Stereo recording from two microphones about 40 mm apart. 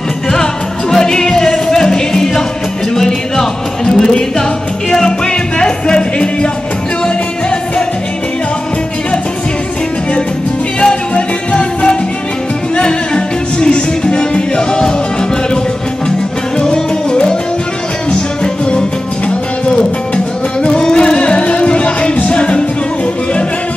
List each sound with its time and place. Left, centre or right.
0.3 s music: centre
3.3 s music: centre
10.8 s music: left
16.6 s music: centre